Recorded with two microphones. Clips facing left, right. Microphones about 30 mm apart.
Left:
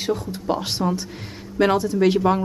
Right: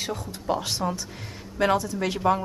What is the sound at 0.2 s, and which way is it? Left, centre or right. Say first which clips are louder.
Speech: left 3 dB; centre.